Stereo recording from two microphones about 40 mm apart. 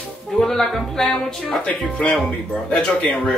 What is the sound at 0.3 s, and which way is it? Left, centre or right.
Music, centre.